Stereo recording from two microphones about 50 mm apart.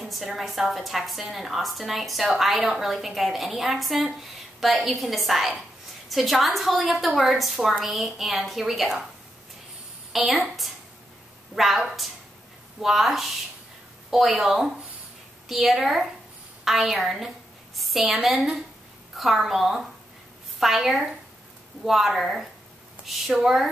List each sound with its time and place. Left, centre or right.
0.0 s a woman's voice: centre
10.1 s a woman's voice: centre
12.8 s a woman's voice: centre